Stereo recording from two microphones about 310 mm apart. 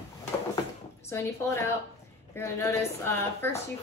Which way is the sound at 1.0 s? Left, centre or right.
Centre.